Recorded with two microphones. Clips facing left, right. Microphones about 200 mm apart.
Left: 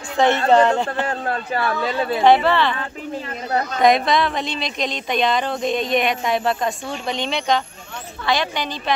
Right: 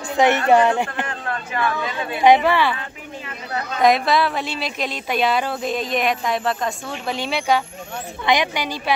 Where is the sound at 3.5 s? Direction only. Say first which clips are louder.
Left 5 dB; 40° left (ahead or behind).